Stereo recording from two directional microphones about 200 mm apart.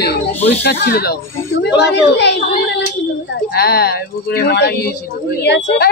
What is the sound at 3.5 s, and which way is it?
Speech, 50° left (ahead or behind).